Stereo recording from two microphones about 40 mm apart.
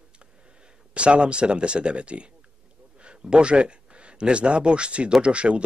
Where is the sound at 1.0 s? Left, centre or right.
Right.